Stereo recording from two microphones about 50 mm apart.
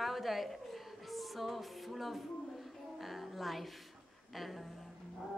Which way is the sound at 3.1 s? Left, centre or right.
Centre.